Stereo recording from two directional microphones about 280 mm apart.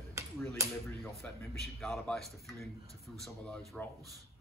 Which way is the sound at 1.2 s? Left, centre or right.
Centre.